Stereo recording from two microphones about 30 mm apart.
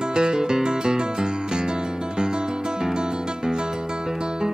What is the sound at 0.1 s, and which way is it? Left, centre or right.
Music, right.